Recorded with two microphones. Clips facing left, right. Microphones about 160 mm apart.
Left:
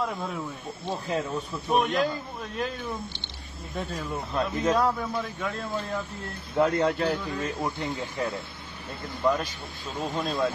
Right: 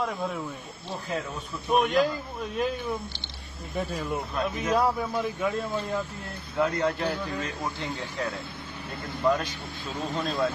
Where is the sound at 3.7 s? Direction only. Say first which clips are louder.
Right 2 dB; 5° right (ahead or behind).